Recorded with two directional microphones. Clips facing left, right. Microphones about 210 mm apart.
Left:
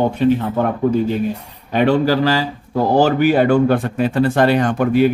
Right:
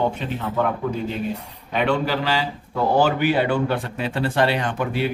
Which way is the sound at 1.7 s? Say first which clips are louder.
Left 7 dB; 40° left (ahead or behind).